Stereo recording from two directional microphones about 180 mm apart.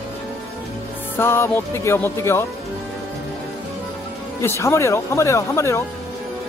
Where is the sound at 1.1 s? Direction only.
15° left (ahead or behind).